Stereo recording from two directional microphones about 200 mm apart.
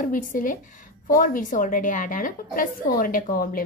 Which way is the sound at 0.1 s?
40° left (ahead or behind).